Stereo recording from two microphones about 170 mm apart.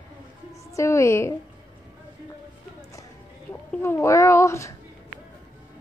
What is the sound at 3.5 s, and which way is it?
Speech, 15° left (ahead or behind).